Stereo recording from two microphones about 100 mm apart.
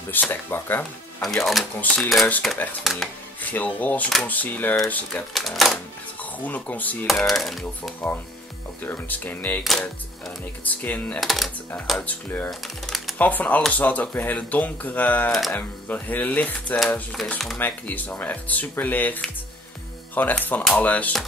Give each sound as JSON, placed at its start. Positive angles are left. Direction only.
{"t": 0.1, "sound": "speech", "side_deg": 20}
{"t": 1.2, "sound": "speech", "side_deg": 0}
{"t": 3.3, "sound": "speech", "side_deg": 15}
{"t": 5.3, "sound": "speech", "side_deg": 0}
{"t": 6.4, "sound": "speech", "side_deg": 15}
{"t": 7.1, "sound": "speech", "side_deg": 0}
{"t": 8.8, "sound": "speech", "side_deg": 20}
{"t": 9.6, "sound": "speech", "side_deg": 0}
{"t": 10.6, "sound": "speech", "side_deg": 15}
{"t": 11.1, "sound": "speech", "side_deg": 0}
{"t": 12.0, "sound": "speech", "side_deg": 20}
{"t": 12.4, "sound": "speech", "side_deg": 0}
{"t": 13.2, "sound": "speech", "side_deg": 15}
{"t": 17.6, "sound": "speech", "side_deg": 20}